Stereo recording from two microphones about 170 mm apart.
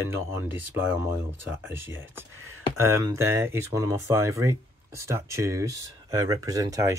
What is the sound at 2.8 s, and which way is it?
Speech, 15° right (ahead or behind).